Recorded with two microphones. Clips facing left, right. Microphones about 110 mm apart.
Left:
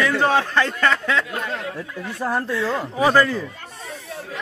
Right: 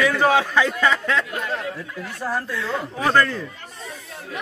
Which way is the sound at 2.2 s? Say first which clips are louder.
Left 3 dB; 25° left (ahead or behind).